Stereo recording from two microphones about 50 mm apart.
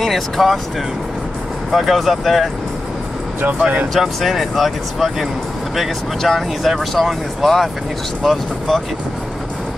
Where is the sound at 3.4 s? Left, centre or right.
Right.